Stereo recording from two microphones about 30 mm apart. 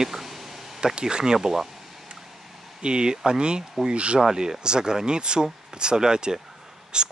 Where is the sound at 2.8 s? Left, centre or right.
Right.